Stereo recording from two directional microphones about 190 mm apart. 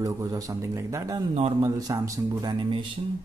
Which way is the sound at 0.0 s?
15° right (ahead or behind).